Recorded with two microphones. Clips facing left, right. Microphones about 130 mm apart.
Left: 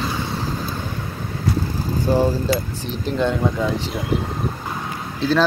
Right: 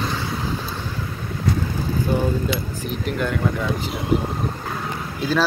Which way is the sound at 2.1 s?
35° left (ahead or behind).